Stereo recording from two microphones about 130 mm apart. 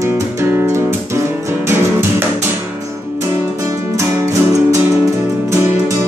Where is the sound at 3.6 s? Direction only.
20° right (ahead or behind).